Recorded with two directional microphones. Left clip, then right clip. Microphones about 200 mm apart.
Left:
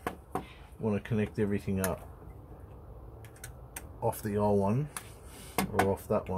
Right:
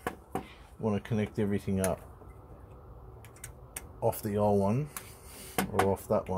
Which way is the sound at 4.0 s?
20° right (ahead or behind).